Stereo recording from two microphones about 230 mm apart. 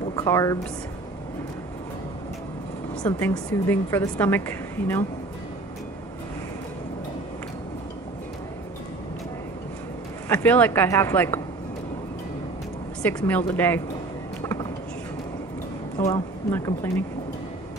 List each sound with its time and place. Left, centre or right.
0.1 s a woman's voice: centre
3.0 s a woman's voice: centre
10.2 s a woman's voice: centre
13.0 s a woman's voice: centre
14.4 s a sound: centre
16.0 s speech: centre